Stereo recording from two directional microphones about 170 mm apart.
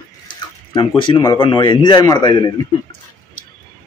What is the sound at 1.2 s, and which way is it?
A man's voice, 25° left (ahead or behind).